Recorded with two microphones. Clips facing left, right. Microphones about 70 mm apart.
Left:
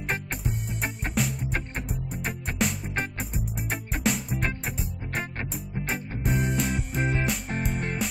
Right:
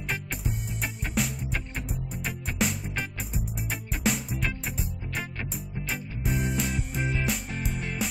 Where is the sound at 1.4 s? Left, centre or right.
Left.